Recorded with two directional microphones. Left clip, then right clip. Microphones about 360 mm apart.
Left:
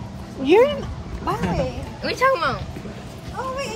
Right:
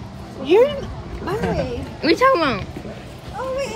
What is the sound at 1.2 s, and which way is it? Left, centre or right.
Speech, centre.